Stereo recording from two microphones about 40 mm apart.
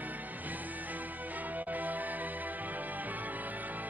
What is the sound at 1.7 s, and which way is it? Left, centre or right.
Music, right.